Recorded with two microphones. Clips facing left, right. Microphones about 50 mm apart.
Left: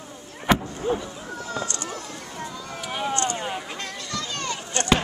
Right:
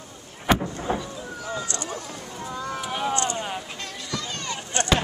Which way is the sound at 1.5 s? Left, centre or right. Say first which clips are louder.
Even; right.